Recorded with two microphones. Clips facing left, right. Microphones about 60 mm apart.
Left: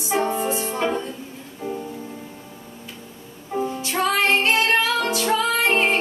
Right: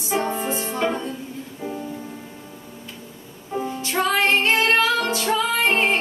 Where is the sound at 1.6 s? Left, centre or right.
Centre.